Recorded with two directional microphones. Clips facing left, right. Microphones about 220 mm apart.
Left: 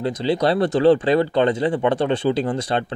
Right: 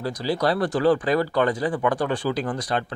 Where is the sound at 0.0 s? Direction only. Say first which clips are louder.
Left 4 dB; 25° left (ahead or behind).